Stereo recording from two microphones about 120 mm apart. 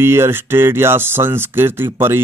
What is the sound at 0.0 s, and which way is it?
Speech, 20° right (ahead or behind).